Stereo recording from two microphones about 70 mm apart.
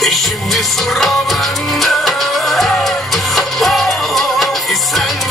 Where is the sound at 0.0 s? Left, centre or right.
Centre.